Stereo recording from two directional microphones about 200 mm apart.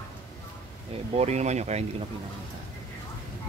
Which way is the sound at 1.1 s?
35° right (ahead or behind).